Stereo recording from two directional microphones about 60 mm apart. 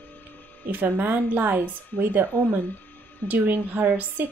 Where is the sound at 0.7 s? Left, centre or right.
Right.